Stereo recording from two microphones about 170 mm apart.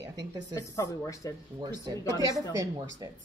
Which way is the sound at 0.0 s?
25° right (ahead or behind).